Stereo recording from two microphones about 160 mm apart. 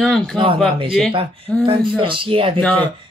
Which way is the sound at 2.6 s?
10° left (ahead or behind).